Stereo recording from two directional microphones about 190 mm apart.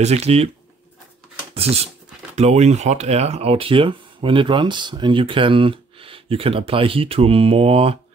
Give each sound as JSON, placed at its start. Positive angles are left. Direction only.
{"t": 0.0, "sound": "speech", "side_deg": -35}
{"t": 1.5, "sound": "speech", "side_deg": -30}